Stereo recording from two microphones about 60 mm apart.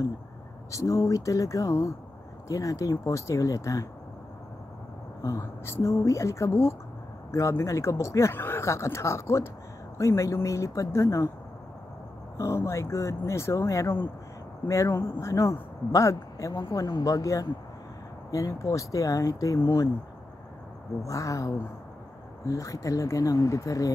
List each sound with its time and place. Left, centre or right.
0.7 s speech: left
5.2 s speech: left
12.4 s speech: left
21.0 s speech: left